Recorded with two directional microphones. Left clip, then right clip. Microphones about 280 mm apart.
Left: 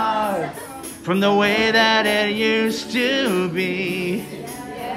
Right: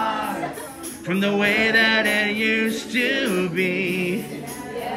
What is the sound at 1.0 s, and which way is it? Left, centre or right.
Mantra, centre.